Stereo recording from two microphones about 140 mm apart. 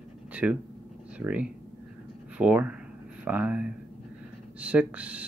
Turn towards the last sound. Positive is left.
turn(degrees=-10)  # may be behind; listen again after turning